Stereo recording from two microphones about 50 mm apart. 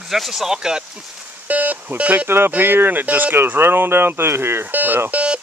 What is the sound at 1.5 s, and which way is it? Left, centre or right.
Speech, right.